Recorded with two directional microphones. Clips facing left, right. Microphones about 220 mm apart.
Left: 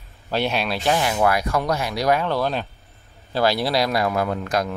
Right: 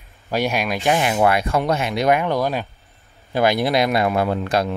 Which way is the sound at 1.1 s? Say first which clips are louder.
Right 2 dB; 25° right (ahead or behind).